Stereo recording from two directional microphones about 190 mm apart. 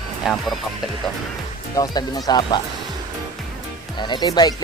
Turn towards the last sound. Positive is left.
turn(degrees=20)  # may be behind; listen again after turning